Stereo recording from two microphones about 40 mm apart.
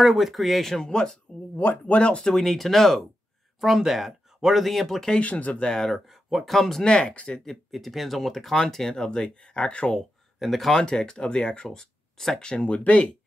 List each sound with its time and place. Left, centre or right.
0.0 s speech: centre
0.7 s speech: centre
1.9 s speech: left
2.2 s speech: centre
3.6 s speech: centre
5.2 s speech: left
5.5 s speech: centre
5.9 s speech: centre
6.8 s speech: left
7.7 s speech: centre; by 9.9 s left
10.4 s speech: centre
10.7 s speech: centre
12.4 s speech: left